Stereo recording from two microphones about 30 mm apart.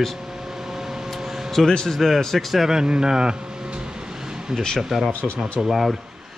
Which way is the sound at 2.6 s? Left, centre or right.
Right.